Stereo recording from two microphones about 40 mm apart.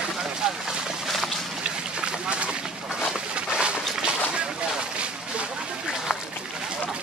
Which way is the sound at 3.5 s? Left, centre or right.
Right.